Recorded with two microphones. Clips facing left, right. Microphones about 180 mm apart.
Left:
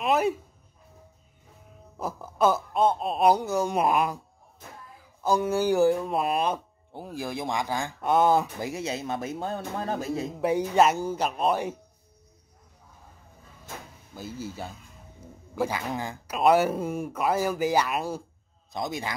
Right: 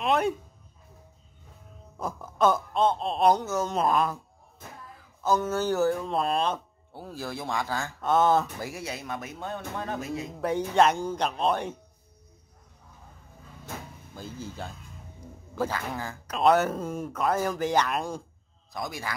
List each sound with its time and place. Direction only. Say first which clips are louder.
0.0 s speech: left 1 dB; 5° left (ahead or behind)
2.0 s speech: left 1 dB; 10° left (ahead or behind)
5.2 s speech: left 2 dB; 10° left (ahead or behind); by 10.2 s 35° left (ahead or behind)
10.4 s speech: left 1 dB; 10° left (ahead or behind)
14.1 s speech: left 3 dB; 10° left (ahead or behind)
18.7 s a man's voice: left 3 dB; 20° left (ahead or behind)